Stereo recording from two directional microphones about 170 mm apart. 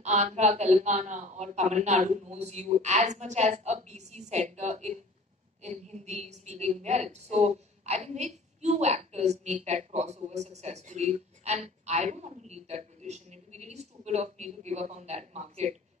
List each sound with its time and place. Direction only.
0.0 s a man's voice: 45° right (ahead or behind)